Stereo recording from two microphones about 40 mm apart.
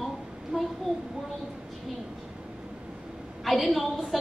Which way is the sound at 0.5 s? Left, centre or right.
Right.